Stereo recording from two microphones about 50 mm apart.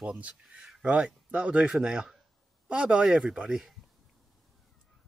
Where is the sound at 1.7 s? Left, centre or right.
Centre.